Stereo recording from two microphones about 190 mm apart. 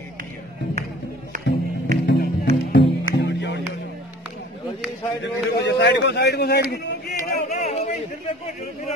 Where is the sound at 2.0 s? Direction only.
60° left (ahead or behind).